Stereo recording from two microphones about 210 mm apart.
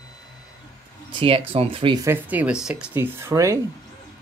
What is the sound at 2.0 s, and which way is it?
Speech, 10° right (ahead or behind).